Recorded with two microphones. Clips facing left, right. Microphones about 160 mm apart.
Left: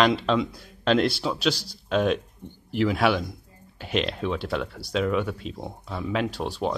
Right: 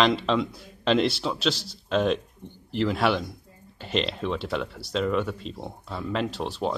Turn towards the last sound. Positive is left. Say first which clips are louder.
# left 1 dB
turn(degrees=0)  # may be behind; listen again after turning